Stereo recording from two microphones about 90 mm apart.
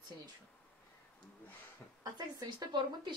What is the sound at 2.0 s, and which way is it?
A woman's voice, 45° right (ahead or behind).